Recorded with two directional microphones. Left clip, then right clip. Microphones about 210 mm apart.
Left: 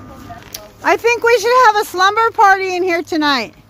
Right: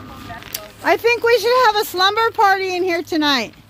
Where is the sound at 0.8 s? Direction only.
10° left (ahead or behind).